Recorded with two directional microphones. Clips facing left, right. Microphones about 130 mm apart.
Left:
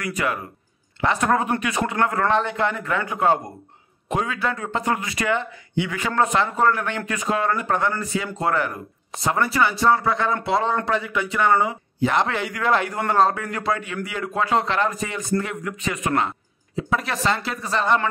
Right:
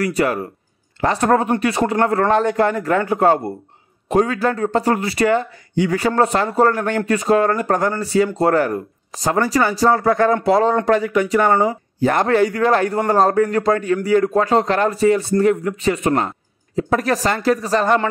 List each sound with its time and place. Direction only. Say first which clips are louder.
0.0 s speech: right 7 dB; 35° right (ahead or behind)